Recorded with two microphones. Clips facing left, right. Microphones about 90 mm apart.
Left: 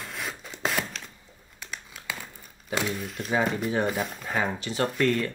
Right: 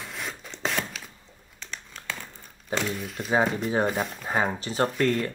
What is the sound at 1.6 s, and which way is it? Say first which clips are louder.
Crumpling: even; 5° left (ahead or behind).